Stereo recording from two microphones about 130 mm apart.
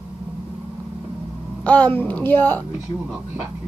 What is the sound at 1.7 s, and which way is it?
Speech, 10° left (ahead or behind).